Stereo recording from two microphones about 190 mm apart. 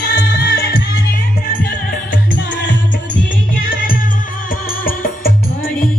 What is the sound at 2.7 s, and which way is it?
Music, 45° left (ahead or behind).